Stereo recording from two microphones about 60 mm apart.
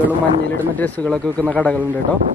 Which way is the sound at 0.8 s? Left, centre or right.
Left.